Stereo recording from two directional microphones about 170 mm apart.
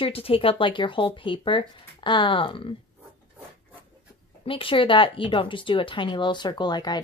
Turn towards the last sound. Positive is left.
turn(degrees=25)  # may be behind; listen again after turning